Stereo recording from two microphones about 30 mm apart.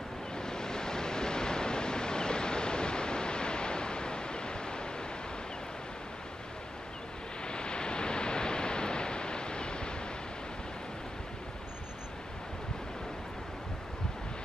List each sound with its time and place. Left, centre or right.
0.4 s waves: left
7.4 s pink noise: left